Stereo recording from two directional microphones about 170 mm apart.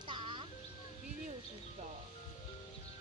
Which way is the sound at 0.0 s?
30° right (ahead or behind).